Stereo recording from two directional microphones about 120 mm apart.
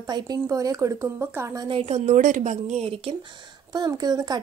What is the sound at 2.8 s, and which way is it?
A woman's voice, 50° right (ahead or behind).